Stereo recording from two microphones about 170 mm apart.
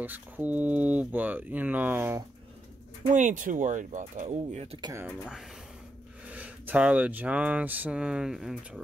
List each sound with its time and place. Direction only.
0.0 s speech: 10° right (ahead or behind)
3.1 s speech: 50° right (ahead or behind)
5.0 s speech: 5° right (ahead or behind)